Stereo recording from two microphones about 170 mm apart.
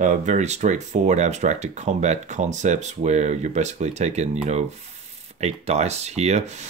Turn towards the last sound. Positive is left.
turn(degrees=-40)  # may be behind; listen again after turning